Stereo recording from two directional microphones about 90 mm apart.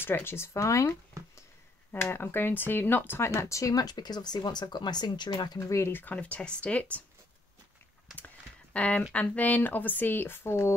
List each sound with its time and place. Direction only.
0.0 s speech: 25° left (ahead or behind); by 5.7 s 50° left (ahead or behind)
5.7 s speech: 30° left (ahead or behind); by 7.0 s 15° left (ahead or behind)
8.7 s speech: 15° left (ahead or behind)